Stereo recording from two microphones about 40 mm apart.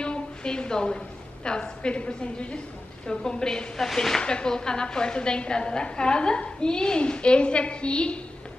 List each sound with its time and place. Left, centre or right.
0.0 s a sound: left
1.4 s a woman's voice: left
3.7 s speech: centre
4.2 s a woman's voice: left